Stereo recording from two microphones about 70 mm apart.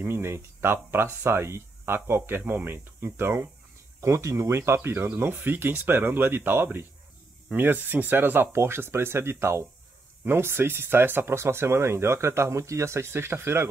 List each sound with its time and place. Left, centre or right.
0.0 s speech: right
4.0 s speech: right